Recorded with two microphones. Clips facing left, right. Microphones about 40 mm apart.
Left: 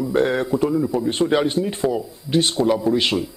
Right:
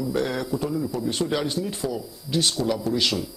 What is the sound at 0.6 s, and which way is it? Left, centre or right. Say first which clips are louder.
A man's voice: left 7 dB; left.